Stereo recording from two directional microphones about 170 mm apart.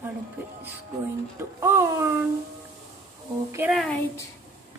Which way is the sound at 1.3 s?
15° right (ahead or behind).